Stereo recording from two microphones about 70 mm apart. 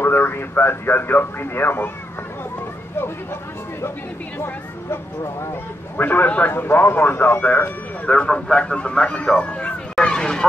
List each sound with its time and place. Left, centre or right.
0.0 s speech: left
5.2 s speech: left
5.9 s speech: left
8.1 s a man's voice: centre
9.9 s a sound: centre